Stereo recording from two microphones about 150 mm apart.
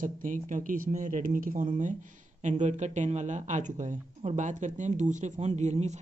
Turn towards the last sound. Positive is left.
turn(degrees=-50)  # may be behind; listen again after turning